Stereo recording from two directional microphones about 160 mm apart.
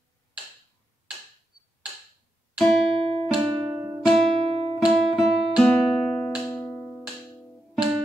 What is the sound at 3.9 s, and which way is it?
Music, centre (ahead or behind).